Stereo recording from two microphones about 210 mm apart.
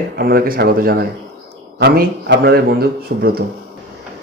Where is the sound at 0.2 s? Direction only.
45° right (ahead or behind).